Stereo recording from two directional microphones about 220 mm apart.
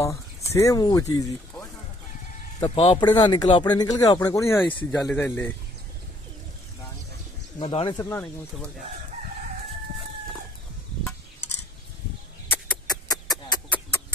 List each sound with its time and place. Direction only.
0.0 s speech: 15° left (ahead or behind)
2.6 s speech: 25° left (ahead or behind)
4.9 s speech: 5° left (ahead or behind)
7.5 s speech: 25° left (ahead or behind)
8.0 s speech: 10° left (ahead or behind)
12.4 s a sound: 15° left (ahead or behind)